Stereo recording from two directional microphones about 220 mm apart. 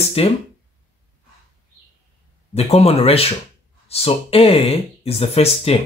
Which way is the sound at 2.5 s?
30° left (ahead or behind).